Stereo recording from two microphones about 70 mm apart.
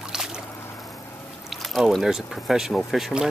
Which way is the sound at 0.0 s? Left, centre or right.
Centre.